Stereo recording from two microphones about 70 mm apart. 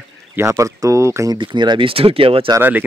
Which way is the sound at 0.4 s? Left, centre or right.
Right.